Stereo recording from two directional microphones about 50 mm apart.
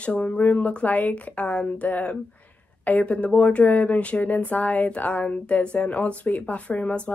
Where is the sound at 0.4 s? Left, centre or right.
Left.